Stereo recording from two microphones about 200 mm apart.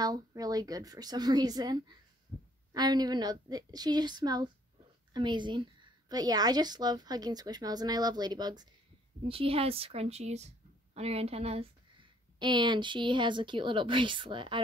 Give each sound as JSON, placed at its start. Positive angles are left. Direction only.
{"t": 0.0, "sound": "a woman's voice", "side_deg": -20}